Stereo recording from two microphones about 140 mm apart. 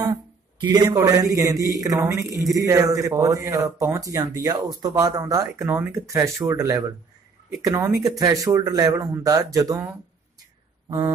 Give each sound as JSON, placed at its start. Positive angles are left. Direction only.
{"t": 0.0, "sound": "speech", "side_deg": -30}